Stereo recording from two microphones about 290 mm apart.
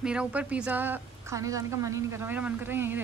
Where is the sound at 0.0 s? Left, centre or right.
Centre.